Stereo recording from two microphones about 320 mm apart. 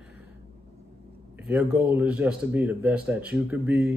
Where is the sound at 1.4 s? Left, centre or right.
Centre.